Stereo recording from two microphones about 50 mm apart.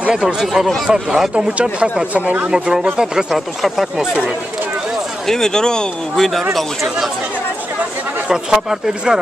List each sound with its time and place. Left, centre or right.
0.1 s speech: centre
1.3 s speech: right
2.5 s speech: centre
3.3 s speech: centre
5.2 s speech: centre
8.3 s speech: centre